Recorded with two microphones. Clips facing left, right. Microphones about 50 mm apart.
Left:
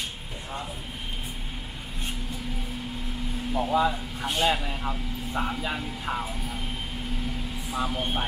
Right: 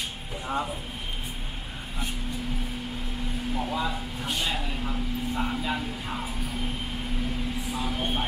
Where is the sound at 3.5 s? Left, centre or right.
Centre.